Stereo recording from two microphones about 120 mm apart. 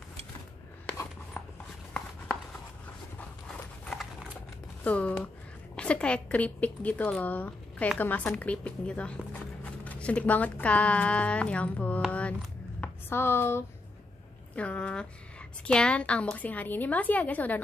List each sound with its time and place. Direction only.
3.2 s dog: 15° left (ahead or behind)
4.8 s speech: 10° left (ahead or behind)
12.1 s a sound: 10° left (ahead or behind)
13.1 s speech: 20° left (ahead or behind)